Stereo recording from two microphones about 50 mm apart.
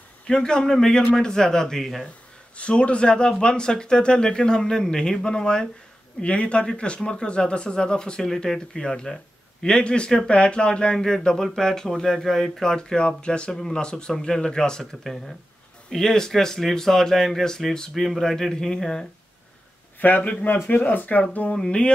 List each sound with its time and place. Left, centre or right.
0.3 s speech: centre
2.5 s speech: left
13.5 s speech: centre
20.0 s speech: left